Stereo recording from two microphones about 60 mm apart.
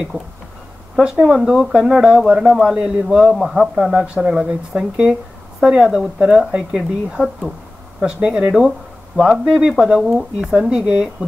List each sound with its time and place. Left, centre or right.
1.2 s speech: centre
3.3 s speech: centre
4.0 s speech: centre